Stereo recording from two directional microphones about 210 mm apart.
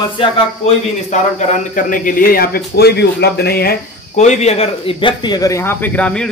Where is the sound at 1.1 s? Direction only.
35° left (ahead or behind).